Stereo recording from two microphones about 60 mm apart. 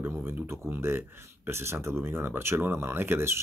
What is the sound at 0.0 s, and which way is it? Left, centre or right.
Speech, right.